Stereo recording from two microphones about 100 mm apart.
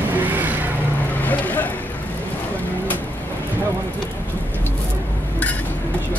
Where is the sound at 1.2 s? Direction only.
15° left (ahead or behind).